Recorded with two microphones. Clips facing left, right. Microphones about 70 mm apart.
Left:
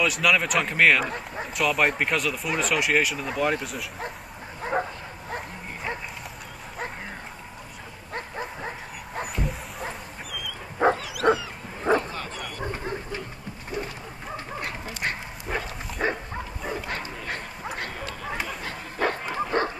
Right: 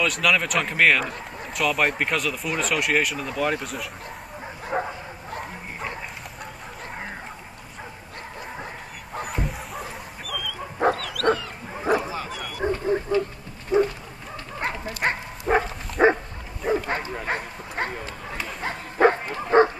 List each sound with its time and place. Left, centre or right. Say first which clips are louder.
0.0 s speech: even; centre
4.7 s bow-wow: even; centre
9.2 s dog: right 1 dB; centre
11.8 s bow-wow: even; centre
13.7 s a sound: right 13 dB; right
14.6 s dog: right 8 dB; right
16.9 s bow-wow: right 5 dB; right
17.7 s a sound: right 8 dB; right
18.6 s bow-wow: right 12 dB; right
19.5 s dog: right 9 dB; right